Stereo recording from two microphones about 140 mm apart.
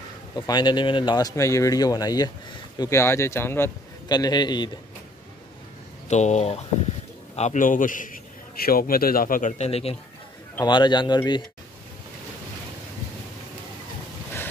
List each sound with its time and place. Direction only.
0.4 s speech: 30° left (ahead or behind)
4.1 s speech: 30° left (ahead or behind)
6.0 s speech: 55° left (ahead or behind)
7.3 s a man's voice: 65° left (ahead or behind); by 9.9 s 45° left (ahead or behind)
10.6 s speech: 30° left (ahead or behind)